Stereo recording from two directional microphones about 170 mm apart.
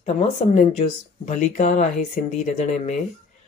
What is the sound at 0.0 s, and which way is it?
Speech, 40° left (ahead or behind).